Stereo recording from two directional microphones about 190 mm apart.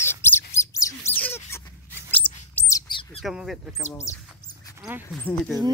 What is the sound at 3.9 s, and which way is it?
Speech, 15° left (ahead or behind).